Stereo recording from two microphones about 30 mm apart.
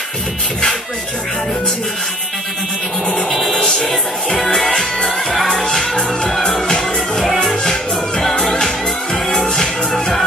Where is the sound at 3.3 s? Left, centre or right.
Centre.